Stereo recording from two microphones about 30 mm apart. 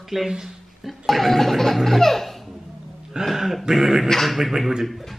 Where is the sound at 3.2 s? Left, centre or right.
Centre.